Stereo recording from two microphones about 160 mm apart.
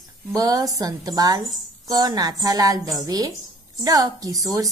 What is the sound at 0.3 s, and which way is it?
A woman's voice, 20° right (ahead or behind).